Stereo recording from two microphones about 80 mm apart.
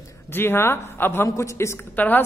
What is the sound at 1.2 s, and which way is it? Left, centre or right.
Speech, left.